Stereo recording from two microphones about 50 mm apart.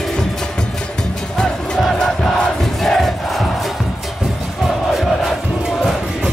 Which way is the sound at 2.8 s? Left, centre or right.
Centre.